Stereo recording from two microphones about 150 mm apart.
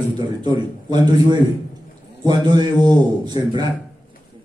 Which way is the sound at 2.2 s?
30° right (ahead or behind).